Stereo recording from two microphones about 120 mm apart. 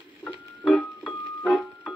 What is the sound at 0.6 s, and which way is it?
Music, 5° left (ahead or behind).